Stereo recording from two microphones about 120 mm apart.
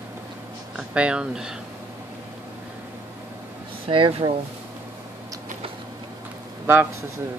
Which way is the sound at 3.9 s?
50° right (ahead or behind).